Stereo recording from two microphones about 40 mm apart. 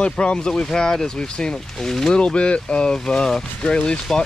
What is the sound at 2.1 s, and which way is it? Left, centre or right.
Speech, left.